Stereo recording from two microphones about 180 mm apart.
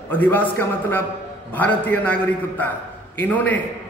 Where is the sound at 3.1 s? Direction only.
10° left (ahead or behind).